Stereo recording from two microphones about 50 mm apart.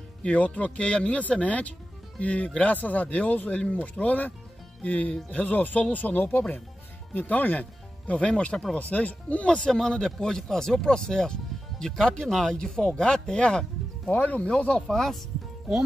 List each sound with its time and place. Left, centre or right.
0.2 s speech: left
8.1 s speech: left
9.6 s speech: centre
14.0 s speech: left
14.9 s speech: centre